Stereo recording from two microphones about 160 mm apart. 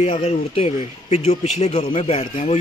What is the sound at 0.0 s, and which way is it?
A man's voice, 35° left (ahead or behind).